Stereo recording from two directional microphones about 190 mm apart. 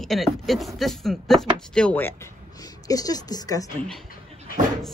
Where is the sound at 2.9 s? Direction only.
20° left (ahead or behind).